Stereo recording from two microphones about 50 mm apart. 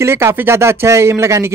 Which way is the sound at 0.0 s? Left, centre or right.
Right.